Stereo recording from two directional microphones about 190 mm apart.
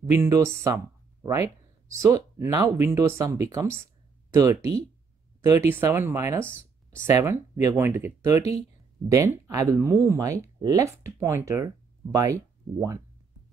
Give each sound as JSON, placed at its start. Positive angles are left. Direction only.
{"t": 0.0, "sound": "speech", "side_deg": -15}